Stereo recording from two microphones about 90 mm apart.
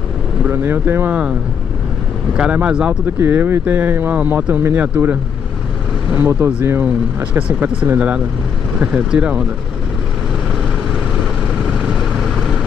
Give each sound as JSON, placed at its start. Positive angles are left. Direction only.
{"t": 0.5, "sound": "speech", "side_deg": -25}
{"t": 2.3, "sound": "speech", "side_deg": -15}
{"t": 3.2, "sound": "speech", "side_deg": -25}
{"t": 6.8, "sound": "speech", "side_deg": -15}
{"t": 11.8, "sound": "vehicle", "side_deg": -5}